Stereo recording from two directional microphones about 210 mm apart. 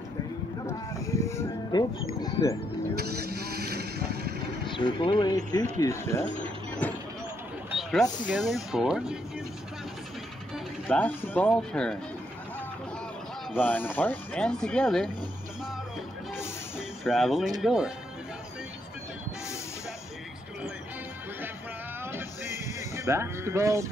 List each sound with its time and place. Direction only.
1.3 s music: 15° left (ahead or behind)
3.0 s vehicle: 50° right (ahead or behind)
4.6 s speech: 20° left (ahead or behind)
7.7 s vehicle: centre (ahead or behind)
8.3 s speech: centre (ahead or behind)
10.5 s speech: 5° left (ahead or behind)
13.6 s speech: 10° left (ahead or behind)
16.7 s music: centre (ahead or behind)
17.6 s speech: centre (ahead or behind)
22.0 s music: 10° right (ahead or behind)